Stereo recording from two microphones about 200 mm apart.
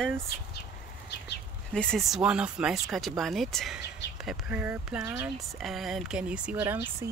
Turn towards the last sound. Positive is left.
turn(degrees=-5)  # may be behind; listen again after turning